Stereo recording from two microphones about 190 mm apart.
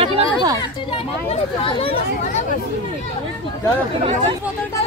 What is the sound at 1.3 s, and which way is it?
Speech, 30° left (ahead or behind).